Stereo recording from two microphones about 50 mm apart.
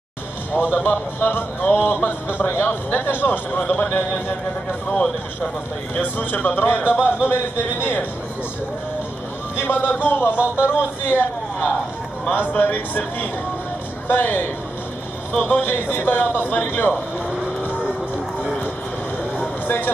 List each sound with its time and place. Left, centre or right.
0.5 s a man's voice: left
4.8 s a man's voice: centre
5.9 s a man's voice: left
9.6 s a man's voice: left
12.3 s a man's voice: left